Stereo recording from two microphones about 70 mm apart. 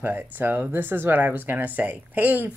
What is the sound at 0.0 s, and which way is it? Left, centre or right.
Speech, right.